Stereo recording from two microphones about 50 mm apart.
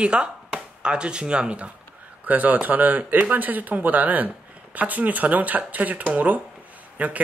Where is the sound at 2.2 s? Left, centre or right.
Right.